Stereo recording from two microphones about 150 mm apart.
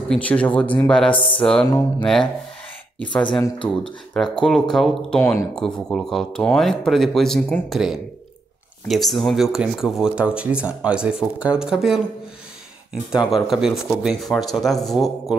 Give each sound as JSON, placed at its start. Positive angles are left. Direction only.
{"t": 0.1, "sound": "speech", "side_deg": 10}
{"t": 1.7, "sound": "speech", "side_deg": 25}
{"t": 3.0, "sound": "speech", "side_deg": 10}
{"t": 5.2, "sound": "speech", "side_deg": 20}
{"t": 5.6, "sound": "speech", "side_deg": 5}
{"t": 13.3, "sound": "speech", "side_deg": 0}